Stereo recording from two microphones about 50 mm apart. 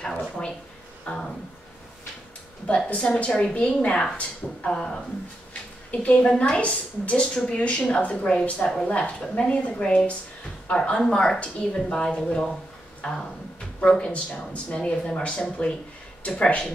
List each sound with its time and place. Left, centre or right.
0.0 s a sound: centre
2.6 s a woman's voice: left
3.3 s a woman's voice: centre